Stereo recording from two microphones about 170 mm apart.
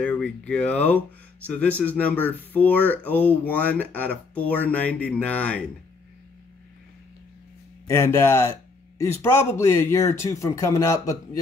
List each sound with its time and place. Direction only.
0.0 s speech: 10° left (ahead or behind)
7.9 s speech: 15° left (ahead or behind)